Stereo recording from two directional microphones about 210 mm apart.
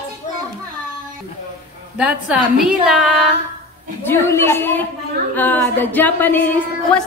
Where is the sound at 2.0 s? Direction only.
5° right (ahead or behind).